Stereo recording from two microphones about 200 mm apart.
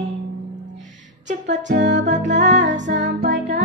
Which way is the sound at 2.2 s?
60° right (ahead or behind).